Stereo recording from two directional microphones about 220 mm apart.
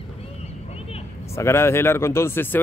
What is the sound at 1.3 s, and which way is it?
Speech, 10° left (ahead or behind).